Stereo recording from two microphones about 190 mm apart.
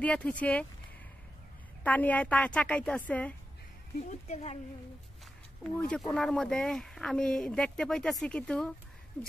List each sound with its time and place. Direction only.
0.0 s a woman's voice: 5° left (ahead or behind)
1.8 s a woman's voice: 10° left (ahead or behind)
4.1 s speech: 35° left (ahead or behind)
5.6 s speech: 5° left (ahead or behind)